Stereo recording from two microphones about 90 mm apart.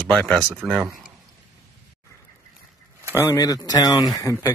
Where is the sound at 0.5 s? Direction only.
5° right (ahead or behind).